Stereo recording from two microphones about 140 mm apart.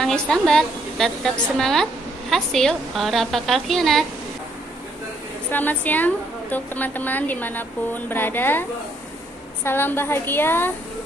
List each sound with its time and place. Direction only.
0.0 s a woman's voice: 5° left (ahead or behind)
5.5 s a woman's voice: 15° left (ahead or behind)
9.7 s a woman's voice: 15° left (ahead or behind)